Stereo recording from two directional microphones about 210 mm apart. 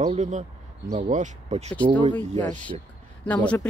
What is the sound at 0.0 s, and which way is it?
Speech, 35° right (ahead or behind).